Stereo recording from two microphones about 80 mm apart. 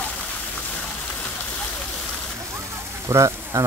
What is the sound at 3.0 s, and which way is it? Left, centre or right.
Frying, right.